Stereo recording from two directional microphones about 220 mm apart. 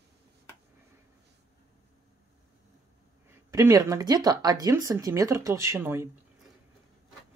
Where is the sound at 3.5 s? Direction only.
15° right (ahead or behind).